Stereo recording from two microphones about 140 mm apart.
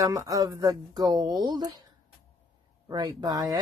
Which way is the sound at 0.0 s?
25° right (ahead or behind).